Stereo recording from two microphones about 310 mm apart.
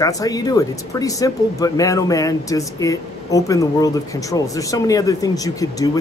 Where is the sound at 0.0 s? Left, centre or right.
Centre.